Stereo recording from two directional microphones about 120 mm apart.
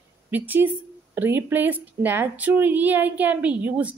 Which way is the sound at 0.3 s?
15° right (ahead or behind).